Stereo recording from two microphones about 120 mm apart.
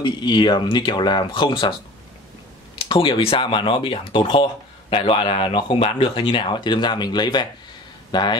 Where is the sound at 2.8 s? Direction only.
45° left (ahead or behind).